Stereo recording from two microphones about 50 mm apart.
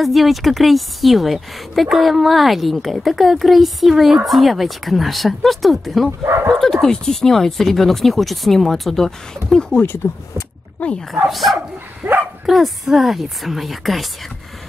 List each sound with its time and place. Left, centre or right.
0.0 s a woman's voice: centre
6.2 s speech: right
6.6 s speech: centre
10.8 s speech: left
11.2 s a woman's voice: centre
12.0 s dog: right
12.4 s a woman's voice: centre